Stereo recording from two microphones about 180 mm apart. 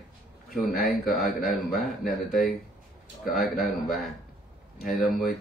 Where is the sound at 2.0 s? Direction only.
55° left (ahead or behind).